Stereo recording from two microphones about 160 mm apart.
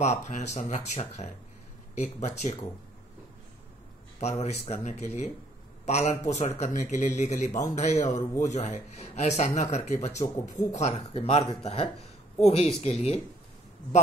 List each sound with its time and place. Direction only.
0.3 s speech: 45° left (ahead or behind)
4.2 s a woman's voice: 40° left (ahead or behind)